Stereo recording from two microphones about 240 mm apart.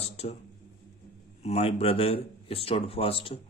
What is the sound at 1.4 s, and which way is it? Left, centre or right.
Speech, left.